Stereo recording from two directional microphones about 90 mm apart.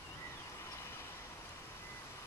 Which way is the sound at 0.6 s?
30° left (ahead or behind).